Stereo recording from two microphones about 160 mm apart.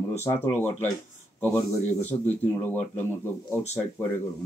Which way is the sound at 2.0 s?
10° left (ahead or behind).